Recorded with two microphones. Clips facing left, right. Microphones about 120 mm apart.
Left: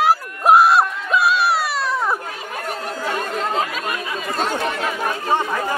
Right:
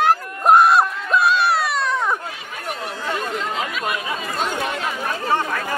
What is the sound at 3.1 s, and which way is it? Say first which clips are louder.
Chatter: left 2 dB; 45° left (ahead or behind).